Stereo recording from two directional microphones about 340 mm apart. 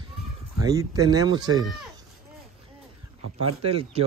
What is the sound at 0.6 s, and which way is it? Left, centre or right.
Speech, centre.